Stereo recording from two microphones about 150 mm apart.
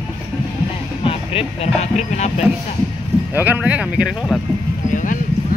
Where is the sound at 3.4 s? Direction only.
10° right (ahead or behind).